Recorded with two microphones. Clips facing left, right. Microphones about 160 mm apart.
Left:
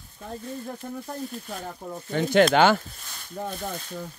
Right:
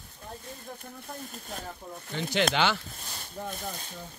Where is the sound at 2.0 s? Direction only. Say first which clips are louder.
Left 9 dB; 50° left (ahead or behind).